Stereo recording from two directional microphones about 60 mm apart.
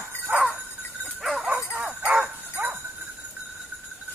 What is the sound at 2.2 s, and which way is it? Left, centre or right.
Bow-wow, right.